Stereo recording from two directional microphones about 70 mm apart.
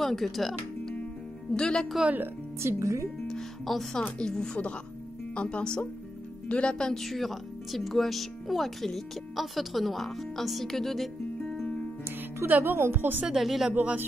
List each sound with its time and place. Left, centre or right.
0.0 s a woman's voice: centre
2.6 s speech: right
3.3 s a woman's voice: centre
12.4 s speech: right
12.7 s speech: right
13.4 s speech: centre